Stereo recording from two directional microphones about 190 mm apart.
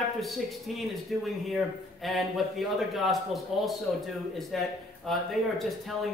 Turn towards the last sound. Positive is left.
turn(degrees=0)  # may be behind; listen again after turning